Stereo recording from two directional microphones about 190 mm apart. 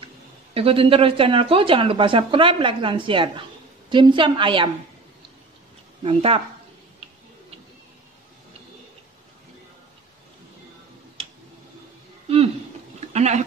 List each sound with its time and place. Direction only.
0.6 s speech: 30° right (ahead or behind)
6.0 s speech: 30° right (ahead or behind)
13.1 s a sound: 35° right (ahead or behind)